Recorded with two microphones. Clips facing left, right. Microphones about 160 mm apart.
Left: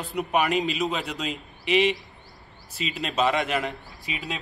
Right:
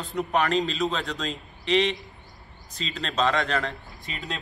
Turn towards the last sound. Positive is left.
turn(degrees=5)  # may be behind; listen again after turning